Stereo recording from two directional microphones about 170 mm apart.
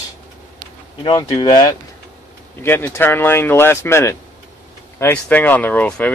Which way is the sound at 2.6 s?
10° left (ahead or behind).